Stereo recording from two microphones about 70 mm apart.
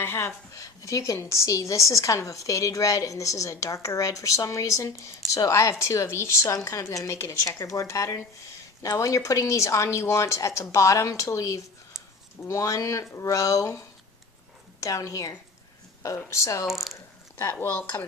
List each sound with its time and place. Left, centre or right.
0.0 s a woman's voice: left
0.5 s a woman's voice: left
11.9 s a sound: centre
12.4 s a woman's voice: left
16.6 s speech: centre
17.6 s speech: left